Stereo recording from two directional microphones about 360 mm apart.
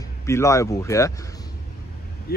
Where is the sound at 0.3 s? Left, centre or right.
Centre.